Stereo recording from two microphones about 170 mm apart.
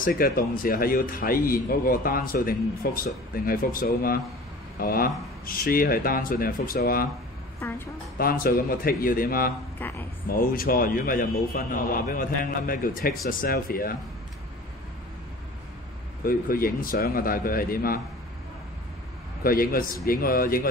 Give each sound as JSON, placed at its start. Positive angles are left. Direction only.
{"t": 0.0, "sound": "speech", "side_deg": 55}
{"t": 7.6, "sound": "a woman's voice", "side_deg": 10}
{"t": 8.2, "sound": "speech", "side_deg": 60}
{"t": 9.8, "sound": "a sound", "side_deg": 10}
{"t": 10.2, "sound": "speech", "side_deg": 55}
{"t": 16.3, "sound": "speech", "side_deg": 60}
{"t": 19.4, "sound": "speech", "side_deg": 60}